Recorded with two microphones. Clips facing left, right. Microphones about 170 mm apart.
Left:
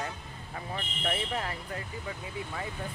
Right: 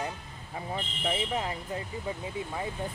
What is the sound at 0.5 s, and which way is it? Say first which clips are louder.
Speech: right 3 dB; 15° right (ahead or behind).